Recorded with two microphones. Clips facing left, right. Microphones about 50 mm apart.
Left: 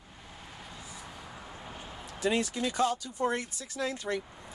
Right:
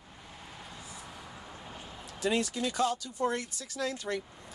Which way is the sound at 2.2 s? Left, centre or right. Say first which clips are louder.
Left 1 dB; centre.